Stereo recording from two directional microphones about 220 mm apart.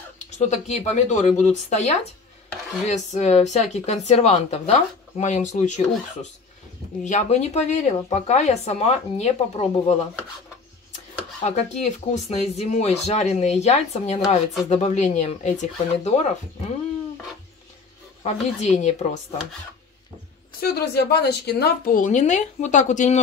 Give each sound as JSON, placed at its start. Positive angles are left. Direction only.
{"t": 0.4, "sound": "speech", "side_deg": 30}
{"t": 7.1, "sound": "speech", "side_deg": 30}
{"t": 11.4, "sound": "speech", "side_deg": 30}
{"t": 18.2, "sound": "speech", "side_deg": 30}
{"t": 20.6, "sound": "speech", "side_deg": 45}